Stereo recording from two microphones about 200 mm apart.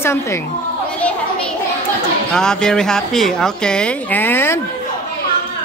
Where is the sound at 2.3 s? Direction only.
5° left (ahead or behind).